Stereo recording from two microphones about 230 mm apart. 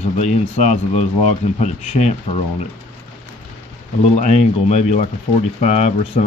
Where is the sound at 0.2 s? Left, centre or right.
Left.